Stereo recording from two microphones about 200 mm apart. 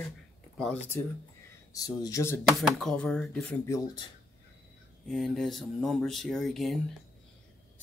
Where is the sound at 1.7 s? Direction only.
20° left (ahead or behind).